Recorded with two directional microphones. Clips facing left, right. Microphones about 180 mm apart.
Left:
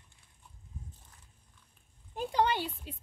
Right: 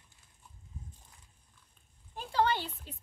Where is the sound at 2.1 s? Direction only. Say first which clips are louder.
Left 1 dB; 15° left (ahead or behind).